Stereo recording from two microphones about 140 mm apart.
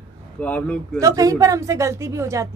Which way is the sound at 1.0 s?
25° right (ahead or behind).